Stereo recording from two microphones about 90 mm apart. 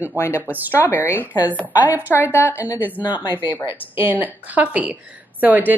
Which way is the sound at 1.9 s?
20° right (ahead or behind).